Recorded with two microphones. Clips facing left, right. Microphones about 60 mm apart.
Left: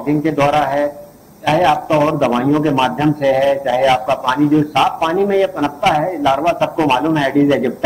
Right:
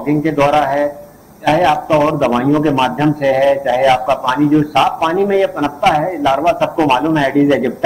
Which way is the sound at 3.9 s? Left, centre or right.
Right.